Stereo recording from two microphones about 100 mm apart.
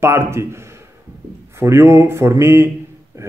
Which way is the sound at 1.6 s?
25° right (ahead or behind).